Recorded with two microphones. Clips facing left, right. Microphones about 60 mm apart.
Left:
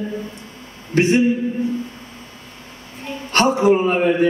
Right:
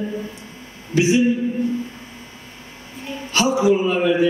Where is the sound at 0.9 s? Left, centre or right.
Left.